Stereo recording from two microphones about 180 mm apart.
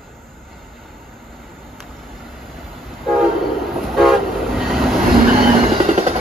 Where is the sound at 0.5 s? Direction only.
Centre (ahead or behind).